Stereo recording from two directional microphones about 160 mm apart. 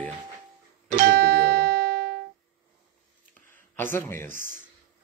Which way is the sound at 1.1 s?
80° right.